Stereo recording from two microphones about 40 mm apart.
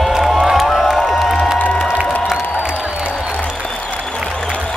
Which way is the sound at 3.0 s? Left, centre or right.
Right.